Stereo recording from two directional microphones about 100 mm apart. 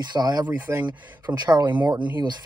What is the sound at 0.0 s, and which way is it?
Speech, 40° right (ahead or behind).